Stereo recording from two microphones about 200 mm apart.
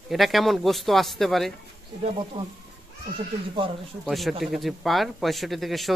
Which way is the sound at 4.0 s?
Centre (ahead or behind).